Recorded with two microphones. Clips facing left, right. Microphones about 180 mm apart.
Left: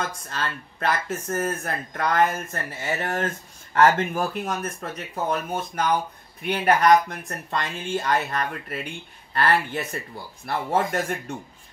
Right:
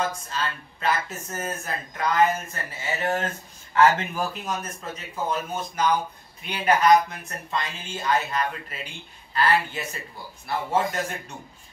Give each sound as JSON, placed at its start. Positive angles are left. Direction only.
{"t": 0.3, "sound": "speech", "side_deg": 60}